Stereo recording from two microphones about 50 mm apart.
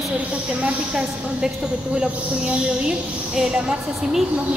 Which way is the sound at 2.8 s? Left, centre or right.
Centre.